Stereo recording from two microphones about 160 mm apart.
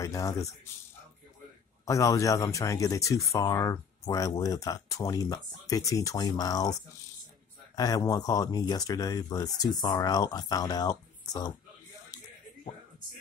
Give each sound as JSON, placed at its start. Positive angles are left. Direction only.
{"t": 0.0, "sound": "speech", "side_deg": 20}
{"t": 1.9, "sound": "speech", "side_deg": 20}